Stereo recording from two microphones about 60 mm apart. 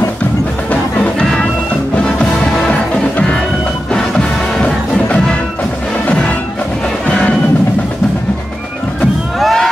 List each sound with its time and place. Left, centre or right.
0.7 s music: centre
2.5 s music: centre
6.0 s music: centre
9.4 s crowd: centre